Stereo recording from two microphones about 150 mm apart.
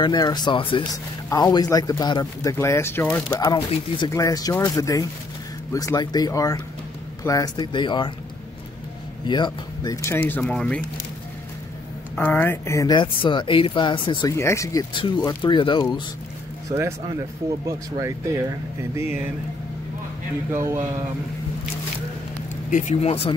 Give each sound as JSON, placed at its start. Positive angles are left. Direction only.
{"t": 0.0, "sound": "speech", "side_deg": 30}
{"t": 3.3, "sound": "speech", "side_deg": 30}
{"t": 9.2, "sound": "a man's voice", "side_deg": 30}
{"t": 10.0, "sound": "speech", "side_deg": 15}
{"t": 12.2, "sound": "speech", "side_deg": 10}
{"t": 14.3, "sound": "speech", "side_deg": 20}
{"t": 17.5, "sound": "speech", "side_deg": -20}
{"t": 22.7, "sound": "speech", "side_deg": 55}